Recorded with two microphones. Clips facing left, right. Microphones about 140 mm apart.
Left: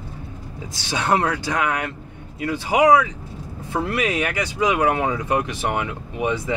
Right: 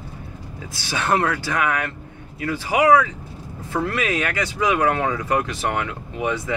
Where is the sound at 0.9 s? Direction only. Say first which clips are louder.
Even; 15° left (ahead or behind).